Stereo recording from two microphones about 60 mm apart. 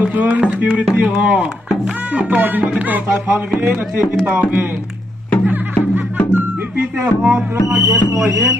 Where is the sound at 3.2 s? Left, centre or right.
Right.